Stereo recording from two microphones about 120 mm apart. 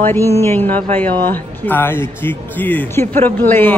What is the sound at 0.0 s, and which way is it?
A man's voice, 20° left (ahead or behind).